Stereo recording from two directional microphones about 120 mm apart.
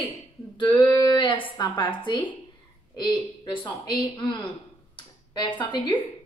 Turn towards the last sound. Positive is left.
turn(degrees=40)  # may be behind; listen again after turning